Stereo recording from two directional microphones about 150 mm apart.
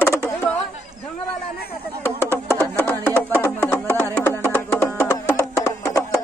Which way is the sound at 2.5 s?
10° left (ahead or behind).